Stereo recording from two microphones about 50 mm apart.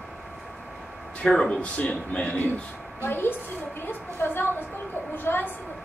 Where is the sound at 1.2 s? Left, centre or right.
Left.